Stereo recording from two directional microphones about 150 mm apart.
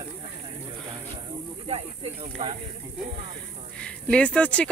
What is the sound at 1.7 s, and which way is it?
Speech, 40° right (ahead or behind).